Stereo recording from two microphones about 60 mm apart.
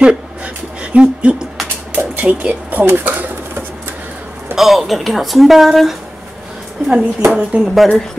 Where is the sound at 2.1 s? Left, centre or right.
Right.